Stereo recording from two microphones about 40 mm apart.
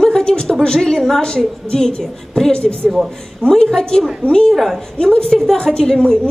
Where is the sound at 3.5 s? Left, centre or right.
Centre.